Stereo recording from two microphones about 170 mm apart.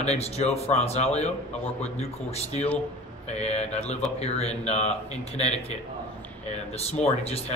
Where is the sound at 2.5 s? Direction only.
10° left (ahead or behind).